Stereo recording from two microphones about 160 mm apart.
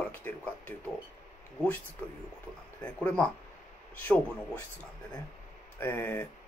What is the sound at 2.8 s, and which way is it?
Speech, 10° left (ahead or behind).